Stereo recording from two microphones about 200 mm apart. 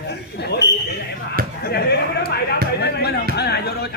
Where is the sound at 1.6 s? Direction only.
50° left (ahead or behind).